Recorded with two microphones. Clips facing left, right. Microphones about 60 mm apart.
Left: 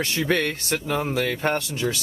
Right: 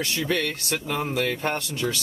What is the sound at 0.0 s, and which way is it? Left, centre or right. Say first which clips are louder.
Speech: left 3 dB; left.